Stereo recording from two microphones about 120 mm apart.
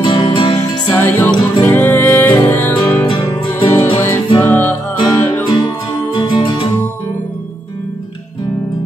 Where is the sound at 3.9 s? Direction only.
20° left (ahead or behind).